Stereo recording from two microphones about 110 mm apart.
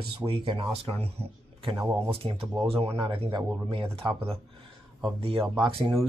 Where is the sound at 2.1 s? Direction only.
60° right (ahead or behind).